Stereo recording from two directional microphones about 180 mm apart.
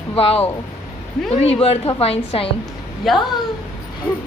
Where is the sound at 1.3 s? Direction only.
35° left (ahead or behind).